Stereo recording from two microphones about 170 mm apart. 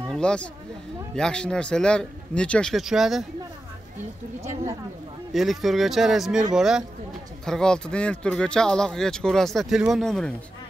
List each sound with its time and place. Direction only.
0.1 s speech: 5° left (ahead or behind)
4.4 s a woman's voice: 20° right (ahead or behind)
5.3 s speech: centre (ahead or behind)